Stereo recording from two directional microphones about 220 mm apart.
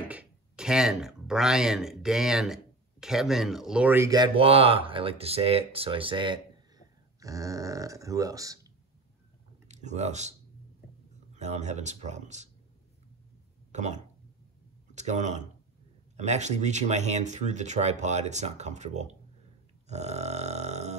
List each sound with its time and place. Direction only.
0.1 s speech: 5° right (ahead or behind)
9.7 s speech: 30° right (ahead or behind)
11.3 s speech: 30° right (ahead or behind)
13.7 s speech: 30° right (ahead or behind)
19.9 s burping: 30° right (ahead or behind)